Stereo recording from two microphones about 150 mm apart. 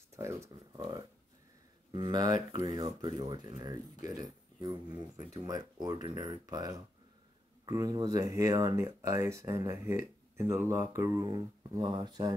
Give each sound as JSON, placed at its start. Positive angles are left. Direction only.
{"t": 0.1, "sound": "speech", "side_deg": -20}